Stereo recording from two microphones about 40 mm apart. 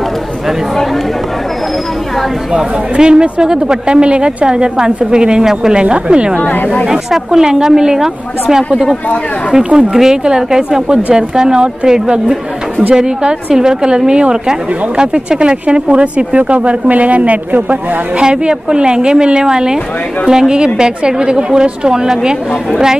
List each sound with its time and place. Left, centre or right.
2.5 s a woman's voice: right
6.9 s a woman's voice: centre
9.9 s a woman's voice: centre; by 17.7 s right
18.2 s a woman's voice: right